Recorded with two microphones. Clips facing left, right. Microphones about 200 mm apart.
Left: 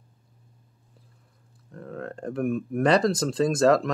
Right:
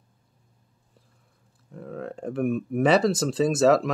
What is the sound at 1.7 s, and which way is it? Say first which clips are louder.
Speech: right 1 dB; 5° right (ahead or behind).